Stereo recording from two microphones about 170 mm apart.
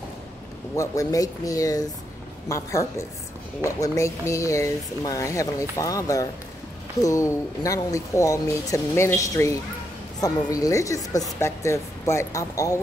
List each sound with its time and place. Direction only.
0.7 s speech: 20° left (ahead or behind)